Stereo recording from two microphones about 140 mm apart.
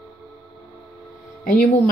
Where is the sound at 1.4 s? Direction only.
75° left (ahead or behind).